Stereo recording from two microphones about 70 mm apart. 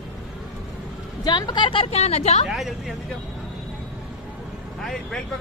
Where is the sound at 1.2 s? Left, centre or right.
Left.